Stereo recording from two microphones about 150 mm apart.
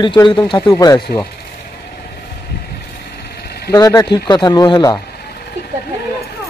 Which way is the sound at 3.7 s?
25° left (ahead or behind).